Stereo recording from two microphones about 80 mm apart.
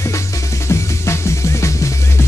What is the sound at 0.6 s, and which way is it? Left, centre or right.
Music, left.